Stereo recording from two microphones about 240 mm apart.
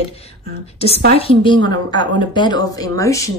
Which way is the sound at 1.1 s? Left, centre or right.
Left.